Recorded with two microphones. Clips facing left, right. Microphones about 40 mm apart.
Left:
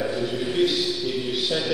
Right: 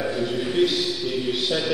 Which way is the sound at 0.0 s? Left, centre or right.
Centre.